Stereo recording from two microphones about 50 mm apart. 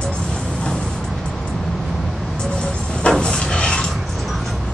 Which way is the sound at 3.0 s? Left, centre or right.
Centre.